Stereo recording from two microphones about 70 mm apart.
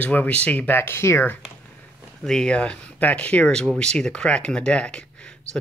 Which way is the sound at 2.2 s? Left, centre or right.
Centre.